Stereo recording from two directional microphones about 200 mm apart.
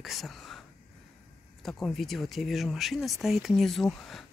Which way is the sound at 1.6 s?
Centre (ahead or behind).